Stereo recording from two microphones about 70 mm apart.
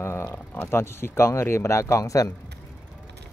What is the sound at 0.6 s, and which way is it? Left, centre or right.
Speech, left.